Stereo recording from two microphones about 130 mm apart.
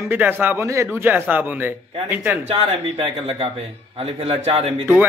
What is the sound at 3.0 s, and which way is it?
Speech, 45° right (ahead or behind).